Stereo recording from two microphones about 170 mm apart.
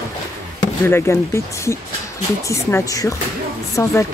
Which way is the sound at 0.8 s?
15° left (ahead or behind).